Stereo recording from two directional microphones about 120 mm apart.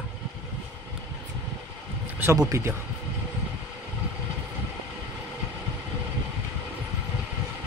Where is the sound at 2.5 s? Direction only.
20° right (ahead or behind).